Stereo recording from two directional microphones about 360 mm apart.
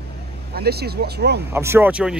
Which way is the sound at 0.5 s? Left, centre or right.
Right.